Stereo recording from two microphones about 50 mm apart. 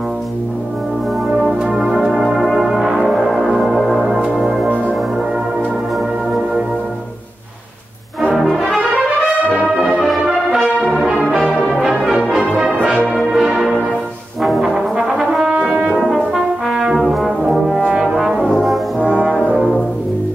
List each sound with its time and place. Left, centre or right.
1.6 s music: centre
8.5 s brass instrument: centre
10.0 s brass instrument: centre
12.3 s music: centre
13.3 s change ringing: centre
15.3 s brass instrument: centre
16.0 s brass instrument: centre
16.8 s brass instrument: centre
18.9 s brass instrument: right